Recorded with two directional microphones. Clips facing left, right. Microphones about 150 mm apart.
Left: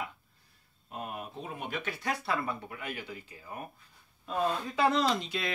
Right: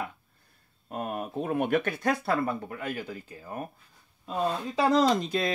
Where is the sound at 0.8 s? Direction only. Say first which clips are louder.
Right 7 dB; 55° right (ahead or behind).